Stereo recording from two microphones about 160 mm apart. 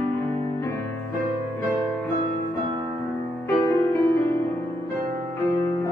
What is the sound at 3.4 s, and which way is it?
Music, 15° left (ahead or behind).